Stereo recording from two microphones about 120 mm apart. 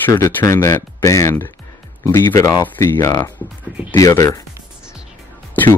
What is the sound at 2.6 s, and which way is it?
Speech, 15° left (ahead or behind).